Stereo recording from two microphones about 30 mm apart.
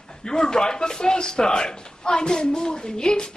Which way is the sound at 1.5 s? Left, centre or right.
Left.